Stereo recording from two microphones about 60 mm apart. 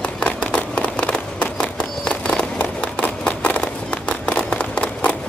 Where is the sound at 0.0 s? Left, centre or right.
Left.